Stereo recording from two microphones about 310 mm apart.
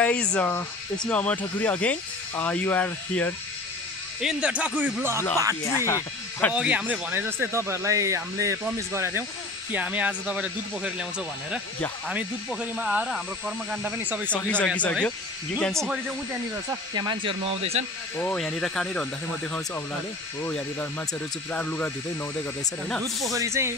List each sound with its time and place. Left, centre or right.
0.0 s speech: centre
5.7 s speech: centre
6.5 s speech: centre
16.9 s speech: centre
18.1 s speech: centre
20.4 s speech: centre
23.3 s speech: centre